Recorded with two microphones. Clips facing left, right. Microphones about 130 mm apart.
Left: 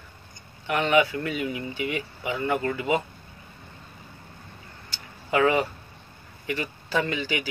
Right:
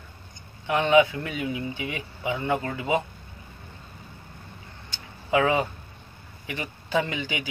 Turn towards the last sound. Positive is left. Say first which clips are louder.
# even
turn(degrees=-20)  # may be behind; listen again after turning